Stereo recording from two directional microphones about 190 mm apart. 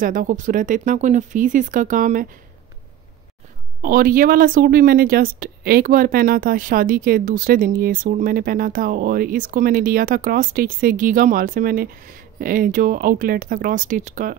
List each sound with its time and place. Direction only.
0.0 s speech: 45° right (ahead or behind)
3.8 s speech: 50° right (ahead or behind)